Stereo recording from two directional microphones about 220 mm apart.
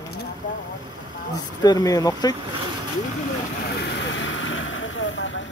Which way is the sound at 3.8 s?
55° left (ahead or behind).